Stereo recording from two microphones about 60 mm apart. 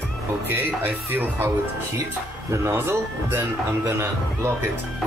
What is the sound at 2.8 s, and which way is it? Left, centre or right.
A man's voice, right.